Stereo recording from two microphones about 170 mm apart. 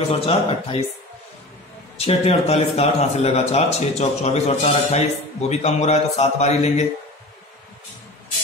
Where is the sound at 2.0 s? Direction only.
40° left (ahead or behind).